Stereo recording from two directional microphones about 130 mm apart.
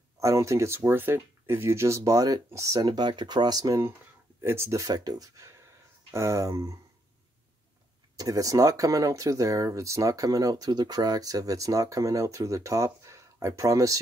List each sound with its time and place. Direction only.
0.2 s speech: 25° right (ahead or behind)
8.2 s speech: 25° right (ahead or behind)